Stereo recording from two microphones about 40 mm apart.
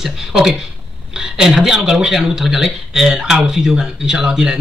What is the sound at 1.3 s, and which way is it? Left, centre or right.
A man's voice, centre.